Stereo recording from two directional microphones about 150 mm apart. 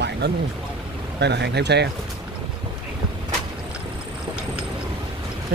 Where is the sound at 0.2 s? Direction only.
90° right.